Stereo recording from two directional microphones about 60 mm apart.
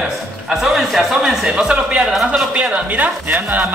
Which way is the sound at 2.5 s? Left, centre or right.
Centre.